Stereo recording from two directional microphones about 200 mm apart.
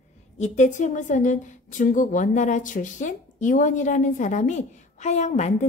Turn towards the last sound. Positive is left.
turn(degrees=35)  # may be behind; listen again after turning